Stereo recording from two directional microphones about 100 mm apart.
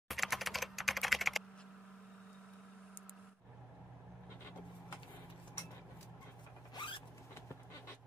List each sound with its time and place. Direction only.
0.1 s computer keyboard: centre (ahead or behind)
6.7 s zipper: 55° left (ahead or behind)